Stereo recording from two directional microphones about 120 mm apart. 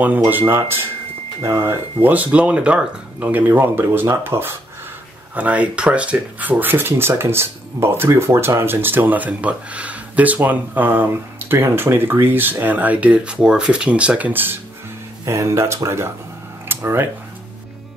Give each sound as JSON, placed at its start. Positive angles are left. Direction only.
{"t": 0.3, "sound": "speech", "side_deg": -15}
{"t": 2.0, "sound": "speech", "side_deg": -10}
{"t": 16.6, "sound": "a sound", "side_deg": -20}